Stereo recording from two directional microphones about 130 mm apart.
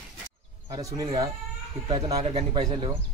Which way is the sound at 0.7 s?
25° right (ahead or behind).